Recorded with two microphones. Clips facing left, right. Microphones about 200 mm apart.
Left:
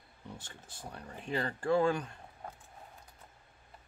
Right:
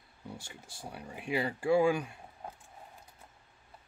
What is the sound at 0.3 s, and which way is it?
Speech, 10° right (ahead or behind).